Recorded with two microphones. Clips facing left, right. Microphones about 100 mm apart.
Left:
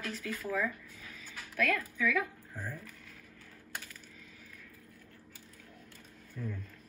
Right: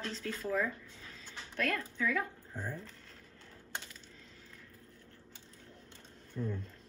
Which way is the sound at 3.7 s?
25° right (ahead or behind).